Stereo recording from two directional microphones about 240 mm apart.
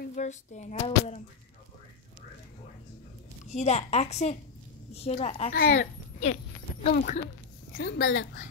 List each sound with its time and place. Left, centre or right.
0.1 s speech: left
3.5 s speech: left
5.6 s speech: left
7.7 s a woman's voice: left